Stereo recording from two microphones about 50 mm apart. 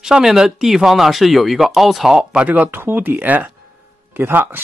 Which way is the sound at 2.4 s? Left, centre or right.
Right.